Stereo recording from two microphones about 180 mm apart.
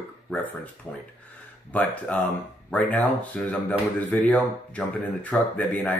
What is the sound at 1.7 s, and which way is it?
Speech, 10° left (ahead or behind).